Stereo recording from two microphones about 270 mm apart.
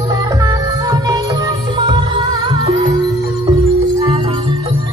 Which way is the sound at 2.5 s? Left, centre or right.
Centre.